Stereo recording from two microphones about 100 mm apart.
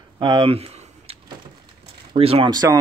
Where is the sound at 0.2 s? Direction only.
50° right (ahead or behind).